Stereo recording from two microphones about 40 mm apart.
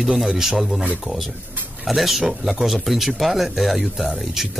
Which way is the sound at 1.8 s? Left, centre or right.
Centre.